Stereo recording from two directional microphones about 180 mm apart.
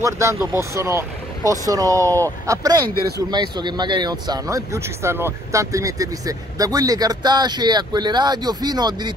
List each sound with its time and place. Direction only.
0.0 s speech: 15° right (ahead or behind)